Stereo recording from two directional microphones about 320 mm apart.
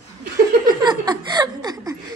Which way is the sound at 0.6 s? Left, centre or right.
Centre.